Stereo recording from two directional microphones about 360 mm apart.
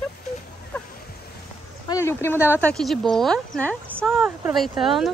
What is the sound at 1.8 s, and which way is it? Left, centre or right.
Speech, centre.